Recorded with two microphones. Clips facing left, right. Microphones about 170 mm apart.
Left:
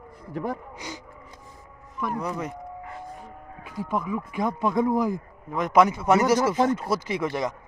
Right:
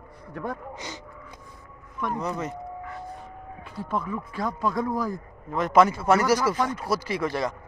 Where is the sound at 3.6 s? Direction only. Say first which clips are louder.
Left 2 dB; 10° left (ahead or behind).